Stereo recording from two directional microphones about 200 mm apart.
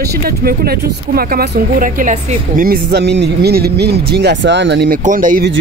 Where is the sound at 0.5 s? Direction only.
50° right (ahead or behind).